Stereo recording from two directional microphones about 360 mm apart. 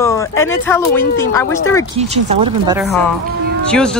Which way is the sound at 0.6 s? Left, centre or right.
Centre.